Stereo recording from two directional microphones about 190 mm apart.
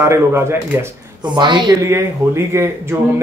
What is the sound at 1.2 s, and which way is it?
Speech, 25° right (ahead or behind).